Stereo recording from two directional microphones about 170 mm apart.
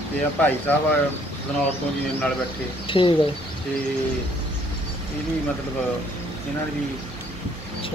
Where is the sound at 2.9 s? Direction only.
30° left (ahead or behind).